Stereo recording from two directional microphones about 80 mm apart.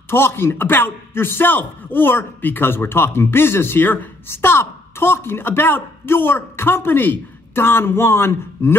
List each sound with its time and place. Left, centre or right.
0.1 s a man's voice: left